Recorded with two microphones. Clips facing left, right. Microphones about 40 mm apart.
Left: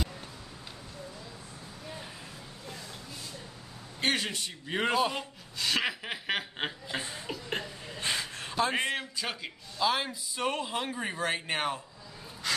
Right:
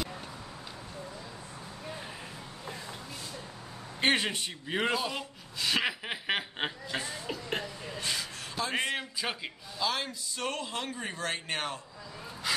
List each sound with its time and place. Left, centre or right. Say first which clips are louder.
4.0 s a man's voice: right 3 dB; right
4.6 s speech: even; centre
5.6 s a sound: even; centre
6.9 s chuckle: right 1 dB; centre
7.2 s a sound: right 1 dB; centre
8.0 s a sound: left 3 dB; left
8.7 s speech: left 1 dB; centre
9.2 s a man's voice: right 1 dB; centre
9.8 s a man's voice: left 3 dB; centre
12.4 s gasp: even; centre